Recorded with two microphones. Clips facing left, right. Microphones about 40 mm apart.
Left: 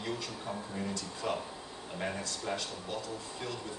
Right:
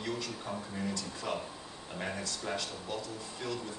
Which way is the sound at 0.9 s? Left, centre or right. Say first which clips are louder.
Left 1 dB; left.